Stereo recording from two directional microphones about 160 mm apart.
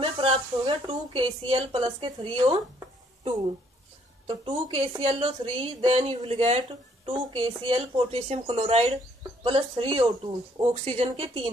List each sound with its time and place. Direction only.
0.0 s a woman's voice: 35° right (ahead or behind)
4.3 s a woman's voice: 35° right (ahead or behind)
7.6 s a woman's voice: 35° right (ahead or behind)
10.7 s a woman's voice: 45° right (ahead or behind)